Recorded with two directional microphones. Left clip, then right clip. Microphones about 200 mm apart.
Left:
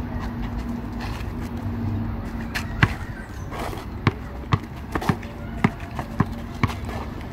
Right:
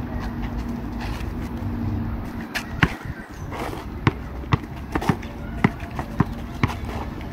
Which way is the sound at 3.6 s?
25° left (ahead or behind).